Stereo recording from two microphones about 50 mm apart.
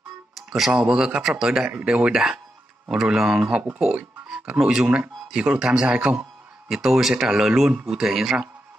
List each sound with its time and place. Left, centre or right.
0.3 s music: centre
0.7 s speech: centre
1.8 s speech: right; by 8.4 s centre